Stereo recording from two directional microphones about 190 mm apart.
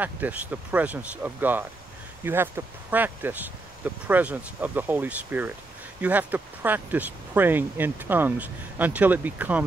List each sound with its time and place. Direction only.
0.0 s speech: 10° right (ahead or behind)